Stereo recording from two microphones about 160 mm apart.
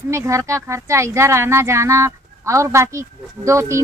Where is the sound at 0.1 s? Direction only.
20° right (ahead or behind).